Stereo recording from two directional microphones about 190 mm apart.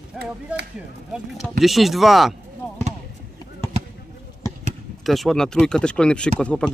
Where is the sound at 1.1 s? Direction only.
Centre (ahead or behind).